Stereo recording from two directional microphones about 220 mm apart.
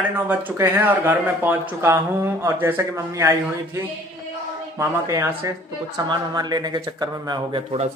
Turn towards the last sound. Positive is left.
turn(degrees=-25)  # may be behind; listen again after turning